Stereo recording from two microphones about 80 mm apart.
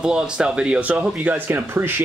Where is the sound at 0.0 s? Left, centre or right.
Centre.